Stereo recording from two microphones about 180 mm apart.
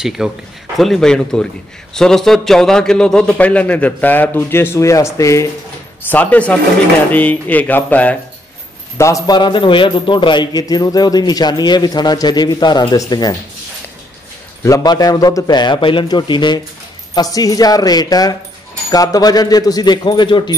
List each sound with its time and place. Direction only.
0.0 s a man's voice: 5° right (ahead or behind); by 13.4 s 20° left (ahead or behind)
14.6 s a man's voice: 20° left (ahead or behind)